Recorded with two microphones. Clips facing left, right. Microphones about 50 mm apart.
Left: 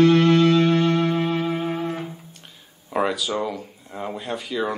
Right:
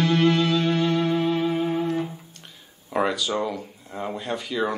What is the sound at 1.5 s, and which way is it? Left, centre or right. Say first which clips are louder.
Music: right 2 dB; centre.